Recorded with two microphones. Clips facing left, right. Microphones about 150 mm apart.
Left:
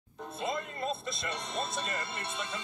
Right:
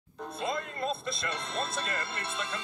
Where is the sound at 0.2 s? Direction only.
Centre (ahead or behind).